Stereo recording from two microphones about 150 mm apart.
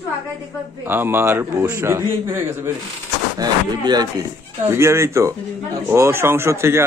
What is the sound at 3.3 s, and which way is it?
Speech, 25° right (ahead or behind).